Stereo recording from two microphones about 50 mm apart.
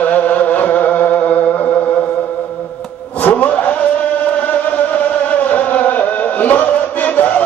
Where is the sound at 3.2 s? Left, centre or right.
Left.